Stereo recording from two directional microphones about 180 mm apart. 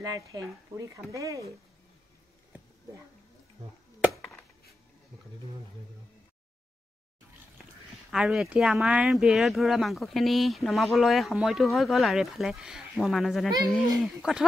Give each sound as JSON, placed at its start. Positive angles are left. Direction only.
{"t": 0.0, "sound": "speech", "side_deg": -20}
{"t": 4.2, "sound": "chopping", "side_deg": 0}
{"t": 8.1, "sound": "speech", "side_deg": 0}